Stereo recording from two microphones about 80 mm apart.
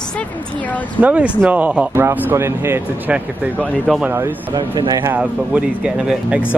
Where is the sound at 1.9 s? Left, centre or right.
Right.